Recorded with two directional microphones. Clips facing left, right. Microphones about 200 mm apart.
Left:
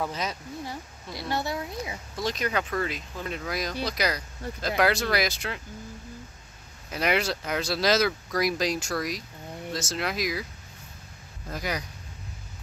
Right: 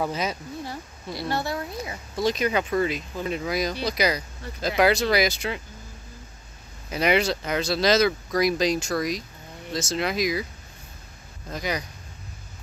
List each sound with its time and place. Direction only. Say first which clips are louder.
0.0 s speech: right 4 dB; 5° right (ahead or behind)
0.7 s a woman's voice: right 3 dB; 15° left (ahead or behind)
2.2 s speech: right 5 dB; 5° right (ahead or behind)
6.9 s speech: right 4 dB; centre (ahead or behind)
11.5 s speech: right 3 dB; 5° left (ahead or behind)